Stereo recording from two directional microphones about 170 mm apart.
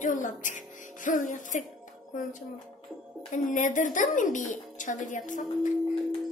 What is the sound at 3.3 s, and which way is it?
A woman's voice, 45° left (ahead or behind).